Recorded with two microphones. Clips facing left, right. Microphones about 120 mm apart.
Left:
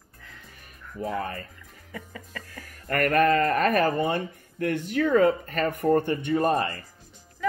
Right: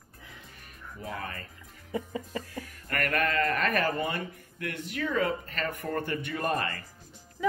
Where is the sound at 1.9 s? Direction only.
20° right (ahead or behind).